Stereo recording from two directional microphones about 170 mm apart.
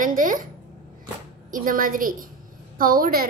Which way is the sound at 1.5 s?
55° right (ahead or behind).